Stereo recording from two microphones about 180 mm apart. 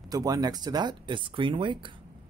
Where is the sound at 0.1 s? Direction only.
20° right (ahead or behind).